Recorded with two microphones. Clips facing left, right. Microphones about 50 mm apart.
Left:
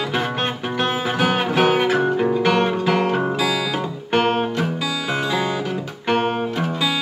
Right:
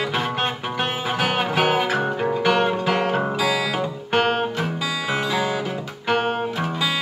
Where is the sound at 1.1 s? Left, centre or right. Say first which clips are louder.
Left 1 dB; centre.